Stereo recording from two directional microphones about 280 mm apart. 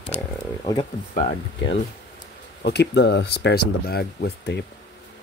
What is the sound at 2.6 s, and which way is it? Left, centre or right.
Speech, left.